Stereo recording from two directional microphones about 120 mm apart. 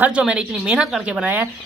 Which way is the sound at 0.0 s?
10° right (ahead or behind).